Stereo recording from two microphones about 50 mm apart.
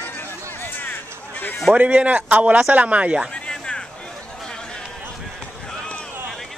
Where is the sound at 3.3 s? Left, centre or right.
Centre.